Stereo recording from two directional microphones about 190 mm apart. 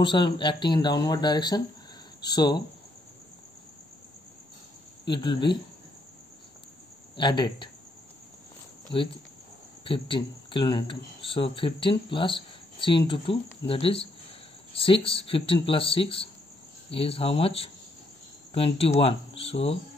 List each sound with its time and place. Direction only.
0.0 s speech: 25° left (ahead or behind)
5.0 s speech: 25° left (ahead or behind)
7.2 s speech: 25° left (ahead or behind)
8.9 s speech: 25° left (ahead or behind)